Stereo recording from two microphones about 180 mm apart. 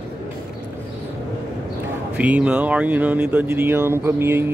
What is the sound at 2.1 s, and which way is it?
Speech, 5° right (ahead or behind).